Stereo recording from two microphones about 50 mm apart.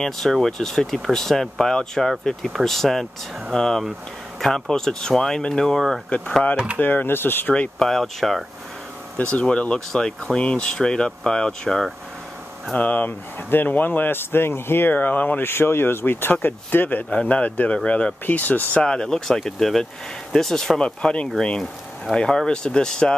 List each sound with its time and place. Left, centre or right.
0.0 s speech: centre
6.0 s speech: left
6.5 s speech: right
6.8 s speech: left
7.8 s speech: centre
9.3 s speech: centre
12.7 s speech: left
15.4 s speech: left
17.3 s speech: left
18.8 s speech: centre